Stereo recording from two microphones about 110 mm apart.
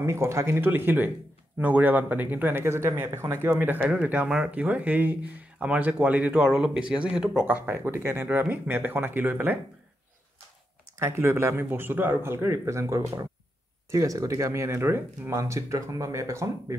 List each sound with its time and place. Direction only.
0.0 s speech: 25° right (ahead or behind)
11.0 s speech: 25° right (ahead or behind)